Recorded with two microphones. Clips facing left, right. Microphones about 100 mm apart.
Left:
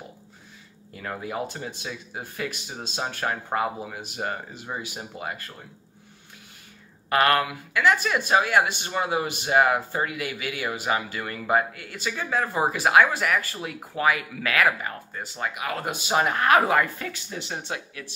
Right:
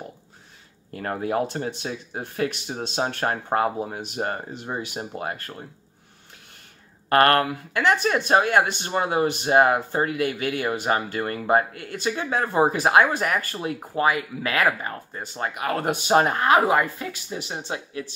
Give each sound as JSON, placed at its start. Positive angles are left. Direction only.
{"t": 0.9, "sound": "speech", "side_deg": -45}
{"t": 7.1, "sound": "speech", "side_deg": -45}
{"t": 16.3, "sound": "speech", "side_deg": -20}